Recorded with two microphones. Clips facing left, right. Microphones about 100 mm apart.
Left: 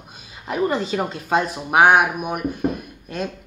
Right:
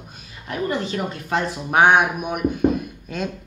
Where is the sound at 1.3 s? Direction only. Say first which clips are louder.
Left 2 dB; 15° left (ahead or behind).